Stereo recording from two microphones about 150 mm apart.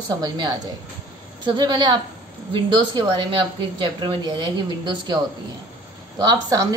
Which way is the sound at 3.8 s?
30° right (ahead or behind).